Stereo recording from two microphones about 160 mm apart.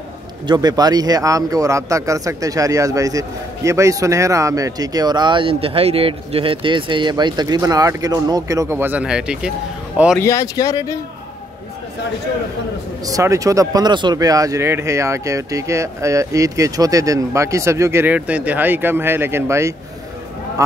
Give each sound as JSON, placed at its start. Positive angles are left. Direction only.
{"t": 0.5, "sound": "speech", "side_deg": -25}
{"t": 10.2, "sound": "speech", "side_deg": 20}
{"t": 13.0, "sound": "speech", "side_deg": -20}